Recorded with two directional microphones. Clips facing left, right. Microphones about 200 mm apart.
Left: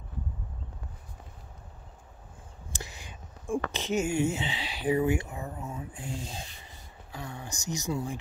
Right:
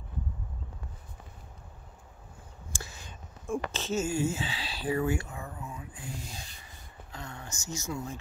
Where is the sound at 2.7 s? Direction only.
15° left (ahead or behind).